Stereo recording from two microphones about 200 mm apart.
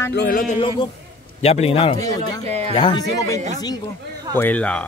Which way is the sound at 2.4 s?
35° right (ahead or behind).